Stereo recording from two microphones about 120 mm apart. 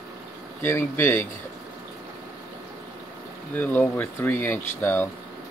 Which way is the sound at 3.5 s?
15° left (ahead or behind).